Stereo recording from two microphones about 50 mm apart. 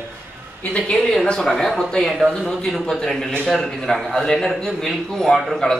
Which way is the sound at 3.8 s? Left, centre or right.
Centre.